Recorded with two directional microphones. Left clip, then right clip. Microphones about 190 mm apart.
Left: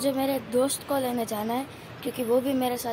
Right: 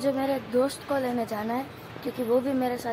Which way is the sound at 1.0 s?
15° left (ahead or behind).